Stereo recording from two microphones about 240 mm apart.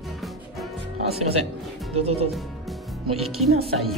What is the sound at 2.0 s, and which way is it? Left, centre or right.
Speech, right.